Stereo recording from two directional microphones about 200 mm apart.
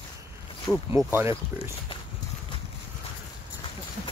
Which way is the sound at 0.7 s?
Centre (ahead or behind).